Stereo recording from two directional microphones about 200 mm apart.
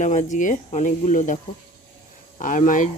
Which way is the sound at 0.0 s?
35° left (ahead or behind).